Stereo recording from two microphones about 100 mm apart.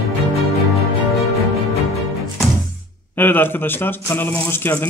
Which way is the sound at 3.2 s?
20° left (ahead or behind).